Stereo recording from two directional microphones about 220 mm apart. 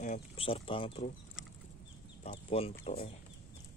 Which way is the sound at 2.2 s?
30° left (ahead or behind).